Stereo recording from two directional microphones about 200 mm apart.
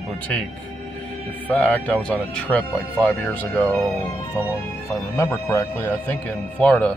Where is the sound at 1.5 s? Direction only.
5° left (ahead or behind).